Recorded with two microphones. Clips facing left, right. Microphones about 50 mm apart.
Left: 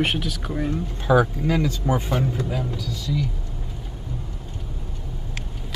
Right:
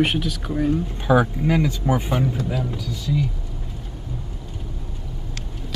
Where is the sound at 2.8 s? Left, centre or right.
Centre.